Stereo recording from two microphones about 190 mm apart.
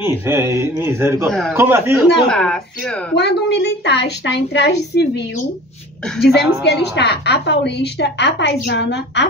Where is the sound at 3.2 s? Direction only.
60° left (ahead or behind).